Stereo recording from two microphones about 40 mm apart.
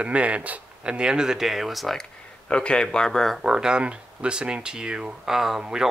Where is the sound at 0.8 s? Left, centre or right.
Right; by 1.9 s centre.